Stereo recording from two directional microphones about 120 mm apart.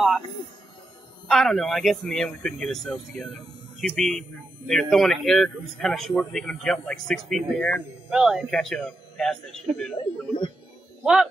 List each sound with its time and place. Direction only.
1.3 s speech: 5° left (ahead or behind)
9.9 s speech: 40° left (ahead or behind)